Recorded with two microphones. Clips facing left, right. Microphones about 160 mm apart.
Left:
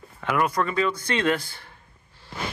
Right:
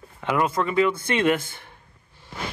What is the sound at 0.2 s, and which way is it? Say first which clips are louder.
Speech: right 1 dB; 25° right (ahead or behind).